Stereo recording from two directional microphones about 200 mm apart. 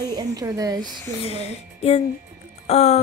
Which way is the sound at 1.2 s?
30° left (ahead or behind).